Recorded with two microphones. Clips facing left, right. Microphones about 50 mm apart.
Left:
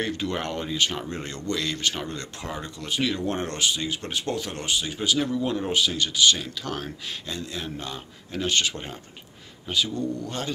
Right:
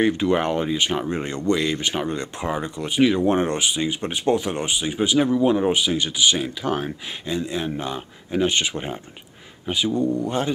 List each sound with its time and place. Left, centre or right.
0.0 s speech: centre